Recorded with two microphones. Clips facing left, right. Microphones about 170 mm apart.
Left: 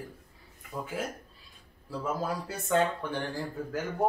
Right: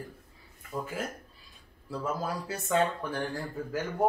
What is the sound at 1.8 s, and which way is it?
Speech, centre (ahead or behind).